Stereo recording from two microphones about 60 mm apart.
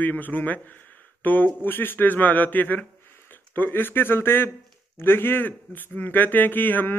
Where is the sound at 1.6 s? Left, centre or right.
Left.